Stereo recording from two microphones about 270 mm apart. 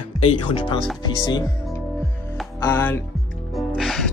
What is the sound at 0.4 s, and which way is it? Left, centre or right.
Speech, centre.